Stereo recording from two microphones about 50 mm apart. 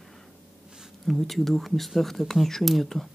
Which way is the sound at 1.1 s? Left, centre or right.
Centre.